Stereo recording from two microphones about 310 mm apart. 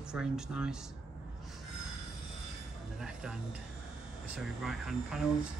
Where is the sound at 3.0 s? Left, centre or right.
Centre.